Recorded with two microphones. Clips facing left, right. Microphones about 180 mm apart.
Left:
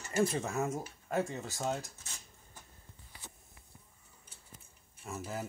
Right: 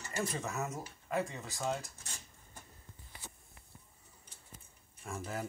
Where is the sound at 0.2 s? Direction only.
30° left (ahead or behind).